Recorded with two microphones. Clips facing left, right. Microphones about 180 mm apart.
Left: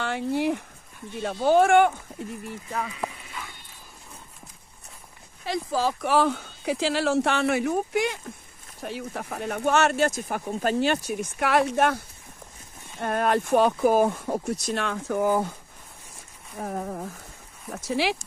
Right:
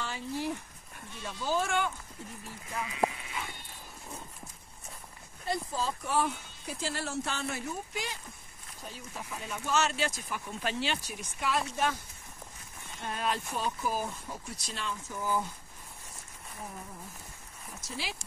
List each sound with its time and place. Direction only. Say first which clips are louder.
0.0 s speech: left 10 dB; 65° left (ahead or behind)
5.4 s speech: left 8 dB; 85° left; by 8.2 s 60° left (ahead or behind)
8.8 s speech: left 11 dB; 70° left (ahead or behind)
13.0 s speech: left 10 dB; 60° left (ahead or behind)
16.5 s speech: left 13 dB; 90° left
17.7 s speech: left 15 dB; 70° left (ahead or behind)